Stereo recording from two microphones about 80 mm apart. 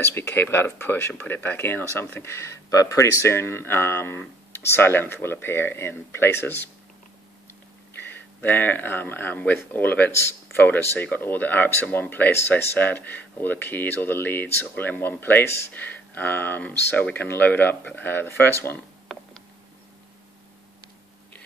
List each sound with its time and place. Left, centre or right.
0.0 s speech: left
8.0 s speech: left